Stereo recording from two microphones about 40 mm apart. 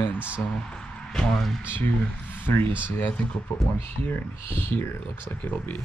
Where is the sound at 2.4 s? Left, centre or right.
Left.